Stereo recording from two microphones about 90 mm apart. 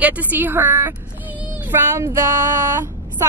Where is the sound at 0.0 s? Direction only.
20° right (ahead or behind).